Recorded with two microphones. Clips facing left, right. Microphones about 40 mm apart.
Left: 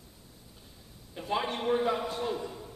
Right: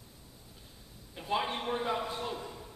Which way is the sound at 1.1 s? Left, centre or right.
Centre.